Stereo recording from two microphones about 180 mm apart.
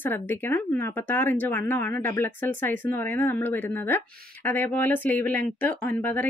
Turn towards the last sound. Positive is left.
turn(degrees=10)  # may be behind; listen again after turning